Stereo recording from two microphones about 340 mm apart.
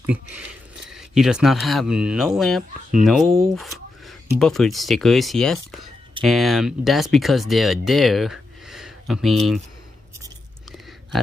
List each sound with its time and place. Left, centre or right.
0.0 s speech: centre